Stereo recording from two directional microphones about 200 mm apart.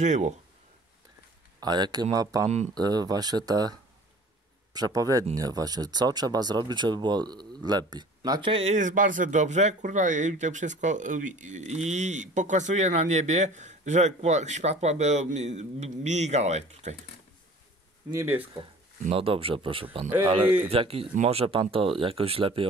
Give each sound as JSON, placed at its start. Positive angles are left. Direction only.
{"t": 0.0, "sound": "speech", "side_deg": -35}
{"t": 1.6, "sound": "speech", "side_deg": -20}
{"t": 2.4, "sound": "speech", "side_deg": -35}
{"t": 2.7, "sound": "speech", "side_deg": -20}
{"t": 4.7, "sound": "speech", "side_deg": -20}
{"t": 18.1, "sound": "speech", "side_deg": -10}
{"t": 18.6, "sound": "speech", "side_deg": -30}